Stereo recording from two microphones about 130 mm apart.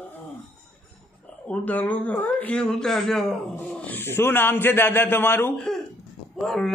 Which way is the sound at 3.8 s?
15° left (ahead or behind).